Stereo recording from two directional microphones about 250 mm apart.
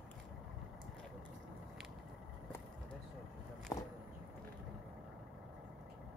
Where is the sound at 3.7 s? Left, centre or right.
Centre.